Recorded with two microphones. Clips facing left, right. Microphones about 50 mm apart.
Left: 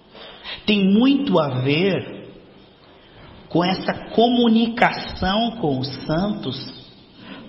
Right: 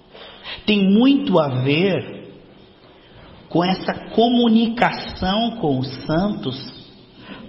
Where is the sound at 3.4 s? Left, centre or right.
Centre.